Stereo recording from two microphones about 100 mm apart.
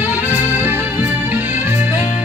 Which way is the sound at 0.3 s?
20° right (ahead or behind).